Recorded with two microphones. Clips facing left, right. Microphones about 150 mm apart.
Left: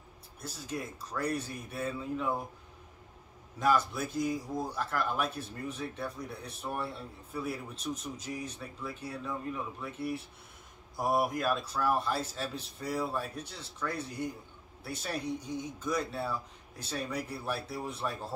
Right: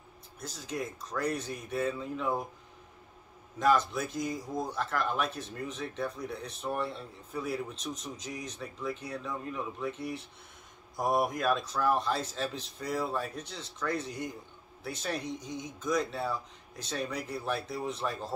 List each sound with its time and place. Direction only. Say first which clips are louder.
0.4 s speech: right 2 dB; 5° left (ahead or behind)
3.5 s speech: right 2 dB; 5° left (ahead or behind)
7.9 s speech: left 2 dB; 5° left (ahead or behind)